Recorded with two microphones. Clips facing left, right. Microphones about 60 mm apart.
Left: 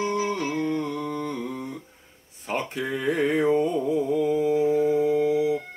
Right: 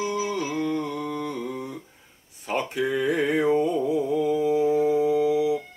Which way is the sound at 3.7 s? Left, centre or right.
Left.